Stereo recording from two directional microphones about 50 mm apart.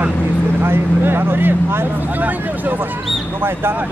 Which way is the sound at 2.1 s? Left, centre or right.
Right.